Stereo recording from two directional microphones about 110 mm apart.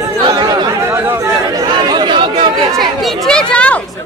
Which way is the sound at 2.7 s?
5° left (ahead or behind).